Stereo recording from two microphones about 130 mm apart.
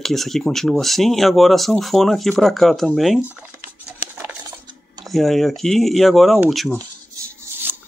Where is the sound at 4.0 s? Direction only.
10° right (ahead or behind).